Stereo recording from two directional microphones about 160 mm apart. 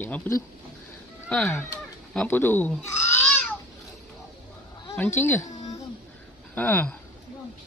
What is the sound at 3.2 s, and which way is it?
Babbling, 5° left (ahead or behind).